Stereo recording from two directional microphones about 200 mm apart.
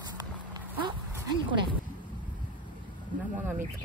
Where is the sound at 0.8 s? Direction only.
25° right (ahead or behind).